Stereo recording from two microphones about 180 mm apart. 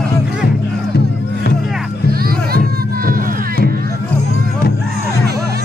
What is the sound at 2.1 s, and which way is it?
Music, 55° right (ahead or behind).